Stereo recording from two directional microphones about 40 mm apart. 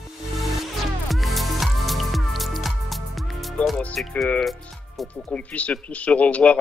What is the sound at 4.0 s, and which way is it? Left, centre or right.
Speech, left.